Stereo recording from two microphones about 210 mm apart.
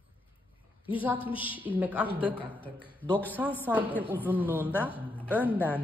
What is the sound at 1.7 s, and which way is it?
Speech, 5° right (ahead or behind).